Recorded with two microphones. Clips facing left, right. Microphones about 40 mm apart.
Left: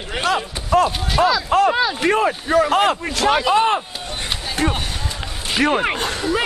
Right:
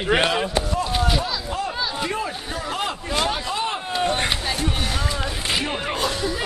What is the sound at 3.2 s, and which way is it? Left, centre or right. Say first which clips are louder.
Speech: left 12 dB; left.